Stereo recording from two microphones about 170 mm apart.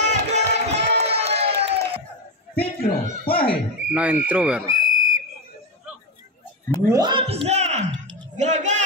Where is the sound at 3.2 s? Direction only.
60° left (ahead or behind).